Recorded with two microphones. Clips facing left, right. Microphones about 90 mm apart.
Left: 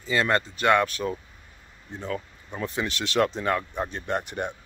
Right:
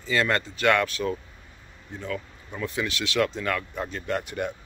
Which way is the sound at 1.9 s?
30° left (ahead or behind).